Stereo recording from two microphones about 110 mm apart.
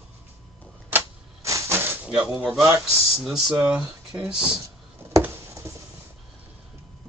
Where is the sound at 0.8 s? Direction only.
20° right (ahead or behind).